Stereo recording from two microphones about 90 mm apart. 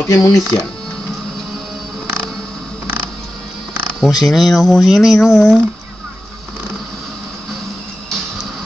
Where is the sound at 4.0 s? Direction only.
5° right (ahead or behind).